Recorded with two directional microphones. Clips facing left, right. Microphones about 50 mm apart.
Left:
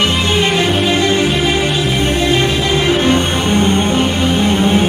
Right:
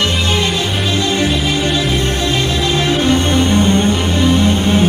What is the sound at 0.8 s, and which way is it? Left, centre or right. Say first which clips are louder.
Music: left 2 dB; left.